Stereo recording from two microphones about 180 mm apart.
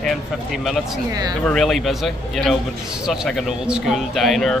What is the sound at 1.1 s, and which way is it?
Speech, 20° right (ahead or behind).